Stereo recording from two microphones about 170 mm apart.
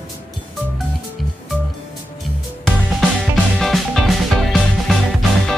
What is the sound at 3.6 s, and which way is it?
Music, centre (ahead or behind).